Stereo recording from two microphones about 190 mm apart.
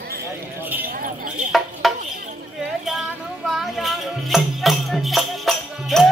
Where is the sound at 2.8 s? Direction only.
Centre (ahead or behind).